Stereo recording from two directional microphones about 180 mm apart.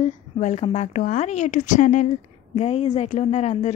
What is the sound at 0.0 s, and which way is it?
A woman's voice, 40° left (ahead or behind).